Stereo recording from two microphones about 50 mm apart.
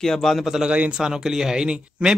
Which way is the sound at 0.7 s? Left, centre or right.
Right.